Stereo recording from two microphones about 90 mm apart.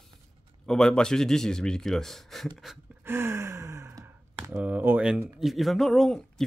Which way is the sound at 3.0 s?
30° right (ahead or behind).